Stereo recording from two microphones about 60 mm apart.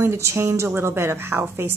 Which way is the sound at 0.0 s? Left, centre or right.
Right.